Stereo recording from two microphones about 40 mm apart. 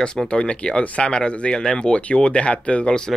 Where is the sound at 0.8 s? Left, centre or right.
Left.